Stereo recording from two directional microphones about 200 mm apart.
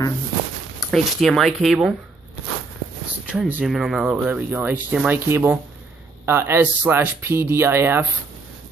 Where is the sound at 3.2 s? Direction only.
5° right (ahead or behind).